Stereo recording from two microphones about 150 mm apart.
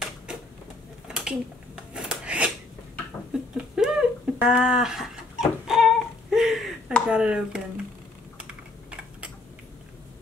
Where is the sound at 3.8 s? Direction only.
5° right (ahead or behind).